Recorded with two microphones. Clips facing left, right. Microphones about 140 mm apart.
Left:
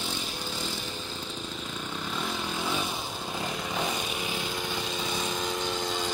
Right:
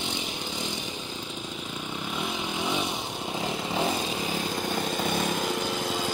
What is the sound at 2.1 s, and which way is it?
Vehicle, 15° right (ahead or behind).